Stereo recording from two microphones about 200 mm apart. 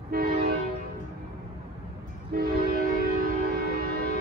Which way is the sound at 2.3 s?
50° right (ahead or behind).